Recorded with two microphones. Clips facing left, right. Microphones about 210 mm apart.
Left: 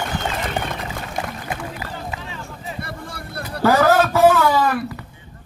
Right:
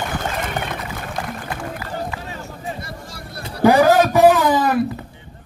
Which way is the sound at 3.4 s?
15° right (ahead or behind).